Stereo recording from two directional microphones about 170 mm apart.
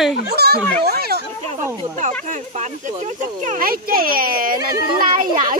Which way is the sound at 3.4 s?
50° right (ahead or behind).